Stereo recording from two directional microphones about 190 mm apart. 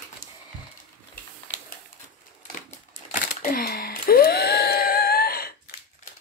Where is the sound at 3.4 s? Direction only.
50° left (ahead or behind).